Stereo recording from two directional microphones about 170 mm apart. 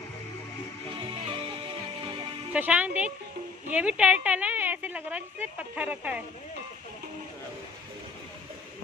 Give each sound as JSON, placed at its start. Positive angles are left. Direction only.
{"t": 0.9, "sound": "music", "side_deg": -30}
{"t": 2.5, "sound": "a woman's voice", "side_deg": -10}